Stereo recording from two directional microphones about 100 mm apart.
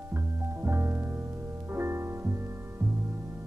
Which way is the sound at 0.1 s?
25° right (ahead or behind).